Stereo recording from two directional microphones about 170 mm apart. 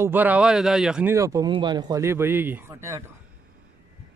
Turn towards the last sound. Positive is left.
turn(degrees=-15)  # may be behind; listen again after turning